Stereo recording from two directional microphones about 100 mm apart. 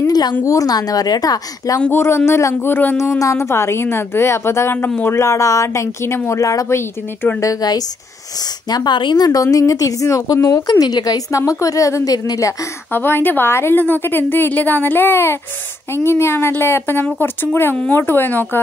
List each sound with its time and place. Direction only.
0.0 s a woman's voice: 40° left (ahead or behind)
1.8 s a woman's voice: 20° left (ahead or behind)
12.9 s speech: 20° left (ahead or behind)